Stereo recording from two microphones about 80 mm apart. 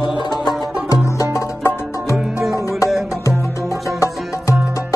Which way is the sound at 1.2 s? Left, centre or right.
Left.